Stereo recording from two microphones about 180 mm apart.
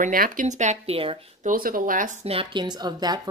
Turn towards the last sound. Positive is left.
turn(degrees=-20)  # may be behind; listen again after turning